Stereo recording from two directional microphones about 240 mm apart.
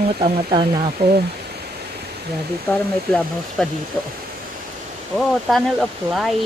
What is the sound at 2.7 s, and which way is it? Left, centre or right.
Speech, centre.